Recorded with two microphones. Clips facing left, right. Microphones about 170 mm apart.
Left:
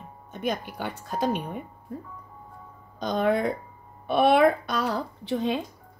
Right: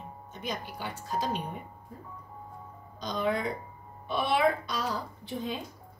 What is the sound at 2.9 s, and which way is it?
A woman's voice, 55° left (ahead or behind).